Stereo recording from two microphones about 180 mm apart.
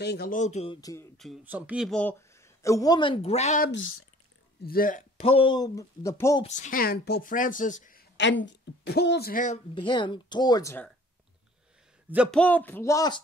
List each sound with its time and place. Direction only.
0.0 s speech: 60° left (ahead or behind)
0.4 s speech: 40° left (ahead or behind)
0.7 s speech: 20° left (ahead or behind)
1.1 s speech: centre (ahead or behind)
1.9 s speech: 10° left (ahead or behind); by 3.6 s 40° left (ahead or behind)
4.6 s speech: 50° left (ahead or behind)
5.2 s speech: 30° left (ahead or behind)
6.4 s speech: 40° left (ahead or behind)
8.2 s speech: 85° left; by 9.6 s 50° left (ahead or behind)
9.8 s speech: 25° left (ahead or behind)
12.3 s music: 5° left (ahead or behind)